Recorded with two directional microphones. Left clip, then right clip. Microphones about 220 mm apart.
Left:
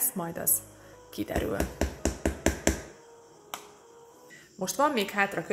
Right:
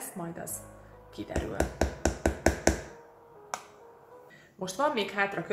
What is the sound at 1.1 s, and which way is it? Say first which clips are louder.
Speech: left 5 dB; 45° left (ahead or behind).